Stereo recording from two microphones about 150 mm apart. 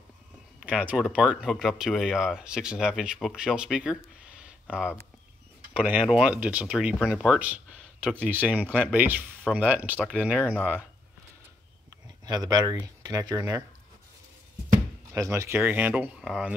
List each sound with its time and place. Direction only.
0.6 s speech: 5° right (ahead or behind)
4.3 s a sound: 5° right (ahead or behind)
5.8 s speech: 10° right (ahead or behind)
12.3 s speech: 25° right (ahead or behind)
13.4 s speech: 15° right (ahead or behind)
15.1 s speech: 20° right (ahead or behind); by 16.5 s 5° right (ahead or behind)